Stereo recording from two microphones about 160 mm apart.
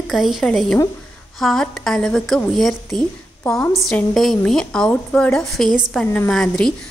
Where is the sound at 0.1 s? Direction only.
Centre (ahead or behind).